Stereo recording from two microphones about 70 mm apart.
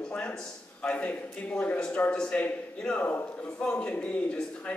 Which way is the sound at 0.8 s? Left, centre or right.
Centre.